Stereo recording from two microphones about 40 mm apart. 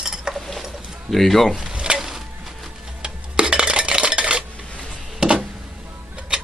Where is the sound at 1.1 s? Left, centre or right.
Centre.